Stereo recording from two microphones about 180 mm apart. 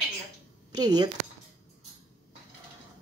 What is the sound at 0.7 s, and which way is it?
Speech, 20° right (ahead or behind).